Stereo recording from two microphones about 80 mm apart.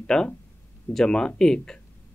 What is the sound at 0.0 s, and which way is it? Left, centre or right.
Speech, centre.